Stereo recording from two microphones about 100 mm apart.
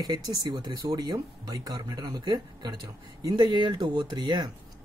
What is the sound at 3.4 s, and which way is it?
Speech, 50° right (ahead or behind).